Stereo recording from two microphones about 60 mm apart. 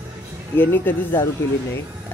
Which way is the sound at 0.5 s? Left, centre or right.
Left.